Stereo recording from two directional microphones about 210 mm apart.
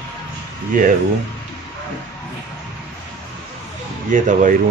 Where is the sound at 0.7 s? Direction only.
40° right (ahead or behind).